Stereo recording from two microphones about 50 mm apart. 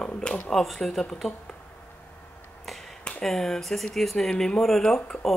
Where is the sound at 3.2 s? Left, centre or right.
Centre.